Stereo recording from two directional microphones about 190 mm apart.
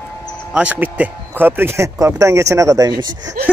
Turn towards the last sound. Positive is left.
turn(degrees=-20)  # may be behind; listen again after turning